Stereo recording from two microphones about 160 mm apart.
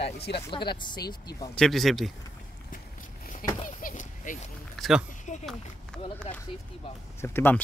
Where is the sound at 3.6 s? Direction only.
55° left (ahead or behind).